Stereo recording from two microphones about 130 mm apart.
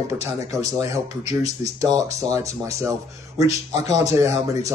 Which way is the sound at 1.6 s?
25° right (ahead or behind).